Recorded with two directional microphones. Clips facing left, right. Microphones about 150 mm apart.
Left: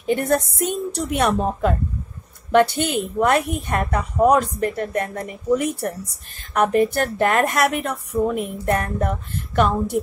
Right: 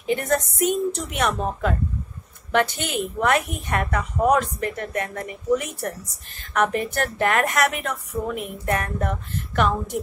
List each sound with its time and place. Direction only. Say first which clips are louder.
0.0 s a woman's voice: left 3 dB; 35° left (ahead or behind)